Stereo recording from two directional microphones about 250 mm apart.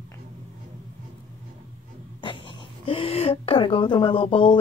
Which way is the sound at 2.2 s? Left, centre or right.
Centre.